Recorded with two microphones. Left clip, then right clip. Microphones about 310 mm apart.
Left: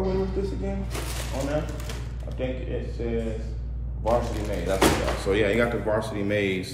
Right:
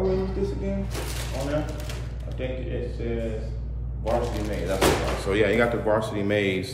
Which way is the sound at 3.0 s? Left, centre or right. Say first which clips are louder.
Left 3 dB; centre.